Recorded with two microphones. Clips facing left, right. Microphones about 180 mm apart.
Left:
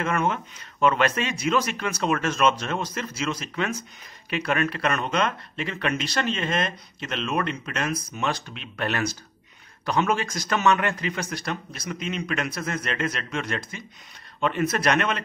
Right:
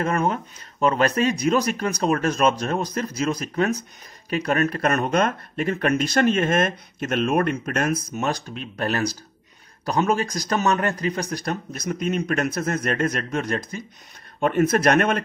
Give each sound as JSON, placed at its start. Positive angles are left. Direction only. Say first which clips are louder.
{"t": 0.0, "sound": "speech", "louder": "right 2 dB", "side_deg": -35}